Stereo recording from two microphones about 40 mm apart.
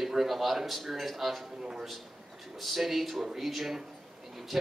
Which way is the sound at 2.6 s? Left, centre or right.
Centre.